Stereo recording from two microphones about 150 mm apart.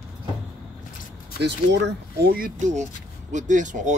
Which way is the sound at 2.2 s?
90° right.